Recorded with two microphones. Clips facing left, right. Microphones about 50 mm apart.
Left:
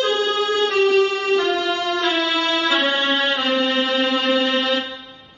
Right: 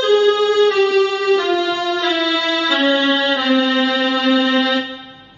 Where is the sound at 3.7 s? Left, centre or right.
Right.